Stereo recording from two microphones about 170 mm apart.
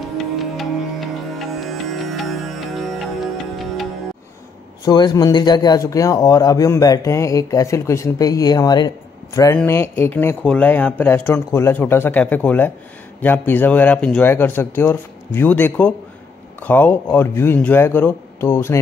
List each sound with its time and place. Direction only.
0.4 s music: centre (ahead or behind)
4.8 s speech: 25° left (ahead or behind)